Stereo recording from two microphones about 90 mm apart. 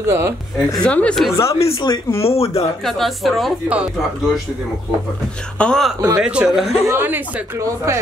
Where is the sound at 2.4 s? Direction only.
90° left.